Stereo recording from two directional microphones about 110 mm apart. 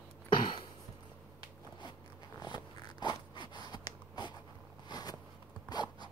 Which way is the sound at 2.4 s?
45° left (ahead or behind).